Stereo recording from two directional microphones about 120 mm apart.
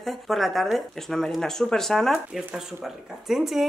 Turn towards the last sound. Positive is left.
turn(degrees=0)  # may be behind; listen again after turning